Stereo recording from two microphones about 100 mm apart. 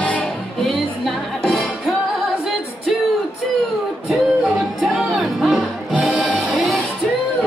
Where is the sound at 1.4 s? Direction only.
Centre (ahead or behind).